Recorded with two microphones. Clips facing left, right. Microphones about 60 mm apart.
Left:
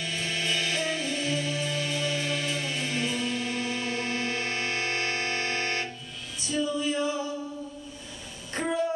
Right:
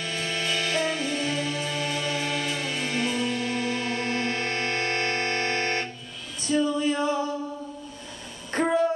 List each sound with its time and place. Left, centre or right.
0.0 s music: centre
4.2 s music: right
5.1 s a sound: right
6.4 s female singing: right